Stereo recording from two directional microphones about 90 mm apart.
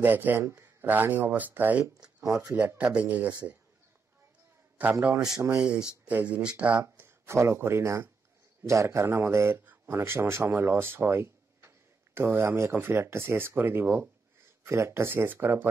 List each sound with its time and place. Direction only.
0.0 s speech: 20° right (ahead or behind)
5.6 s speech: 10° right (ahead or behind)
7.0 s a man's voice: 30° right (ahead or behind)